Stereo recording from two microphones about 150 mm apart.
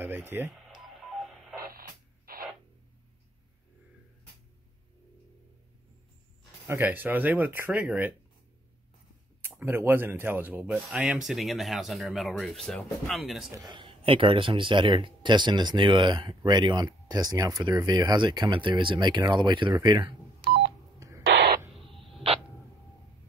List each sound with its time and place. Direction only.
0.0 s speech: 15° right (ahead or behind)
0.8 s telephone dialing: centre (ahead or behind)
1.6 s radio: 75° right (ahead or behind)
6.7 s speech: 15° right (ahead or behind)
9.6 s speech: 15° right (ahead or behind)
13.6 s speech: 30° right (ahead or behind)
21.0 s a sound: 25° right (ahead or behind)
21.7 s a sound: centre (ahead or behind)